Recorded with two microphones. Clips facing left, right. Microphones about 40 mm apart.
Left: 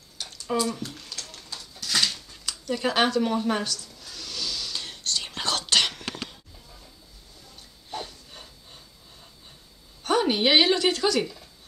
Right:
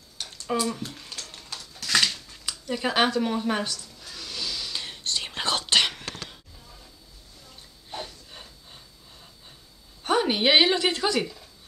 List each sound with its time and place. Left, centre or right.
0.5 s a sound: centre
3.6 s speech: centre
4.0 s whispering: centre
7.9 s a sound: centre
10.0 s a woman's voice: centre
11.1 s a woman's voice: centre